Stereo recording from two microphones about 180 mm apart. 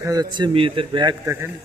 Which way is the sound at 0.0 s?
20° right (ahead or behind).